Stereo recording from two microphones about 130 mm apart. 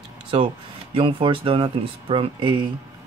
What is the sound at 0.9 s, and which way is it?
Speech, 40° right (ahead or behind).